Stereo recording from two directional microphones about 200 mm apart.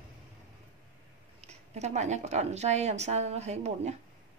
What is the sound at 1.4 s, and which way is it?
A woman's voice, 35° right (ahead or behind).